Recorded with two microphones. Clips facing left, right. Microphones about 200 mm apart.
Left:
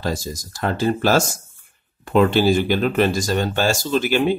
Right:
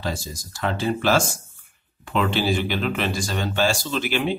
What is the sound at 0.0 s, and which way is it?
Speech, 40° left (ahead or behind).